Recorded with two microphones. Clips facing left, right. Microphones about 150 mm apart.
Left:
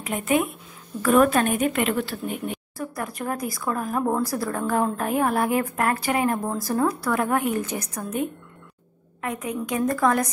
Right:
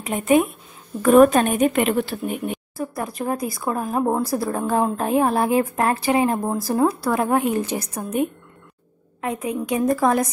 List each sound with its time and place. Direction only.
0.0 s a woman's voice: 25° right (ahead or behind)